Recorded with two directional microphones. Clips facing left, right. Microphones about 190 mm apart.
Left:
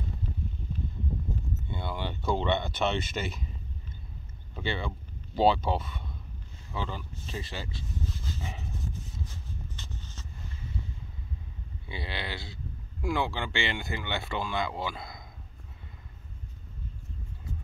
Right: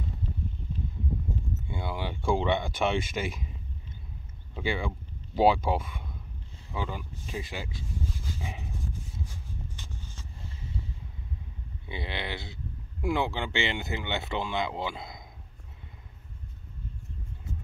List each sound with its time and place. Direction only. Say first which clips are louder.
1.7 s speech: right 1 dB; 10° right (ahead or behind)
4.6 s speech: right 2 dB; 10° right (ahead or behind)
6.7 s dog: right 1 dB; 15° right (ahead or behind)
11.8 s speech: right 2 dB; 20° right (ahead or behind)